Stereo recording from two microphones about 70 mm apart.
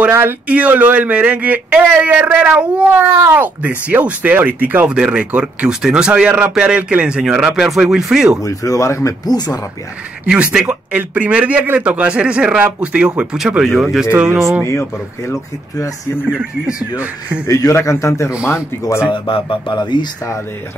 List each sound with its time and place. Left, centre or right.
0.1 s speech: right
0.5 s a man's voice: centre
4.8 s speech: centre
8.4 s speech: left
9.2 s speech: left
10.2 s a man's voice: centre
13.7 s speech: centre
14.1 s a man's voice: centre
14.6 s speech: left
16.2 s speech: centre
17.5 s a man's voice: left
17.7 s speech: left
19.7 s speech: left